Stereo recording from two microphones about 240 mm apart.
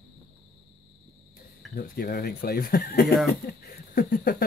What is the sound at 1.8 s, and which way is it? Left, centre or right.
Speech, left.